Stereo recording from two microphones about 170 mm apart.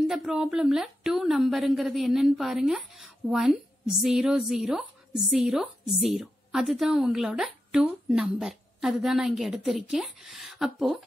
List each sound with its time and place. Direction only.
0.0 s a woman's voice: centre (ahead or behind)